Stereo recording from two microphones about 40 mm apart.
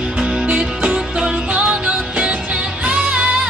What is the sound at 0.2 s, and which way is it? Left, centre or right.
Music, centre.